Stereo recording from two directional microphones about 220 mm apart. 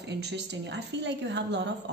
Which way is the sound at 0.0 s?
50° right (ahead or behind).